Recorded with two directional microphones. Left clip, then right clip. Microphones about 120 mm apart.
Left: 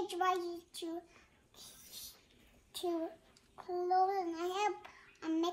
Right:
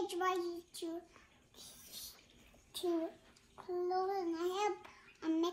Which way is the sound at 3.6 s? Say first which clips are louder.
Left 5 dB; 5° left (ahead or behind).